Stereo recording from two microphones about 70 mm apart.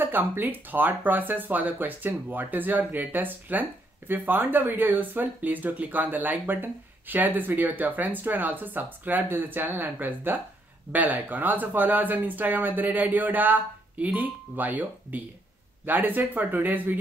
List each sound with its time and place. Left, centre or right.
0.0 s speech: right